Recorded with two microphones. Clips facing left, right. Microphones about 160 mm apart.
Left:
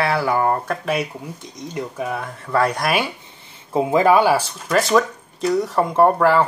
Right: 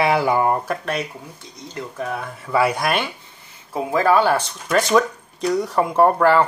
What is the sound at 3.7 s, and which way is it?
Speech, 15° left (ahead or behind).